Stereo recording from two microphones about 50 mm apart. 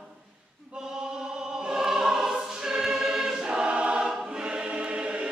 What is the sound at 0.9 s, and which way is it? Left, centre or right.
Choir, centre.